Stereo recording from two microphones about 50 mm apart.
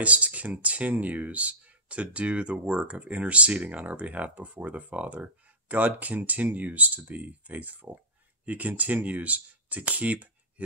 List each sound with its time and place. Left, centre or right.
0.0 s speech: right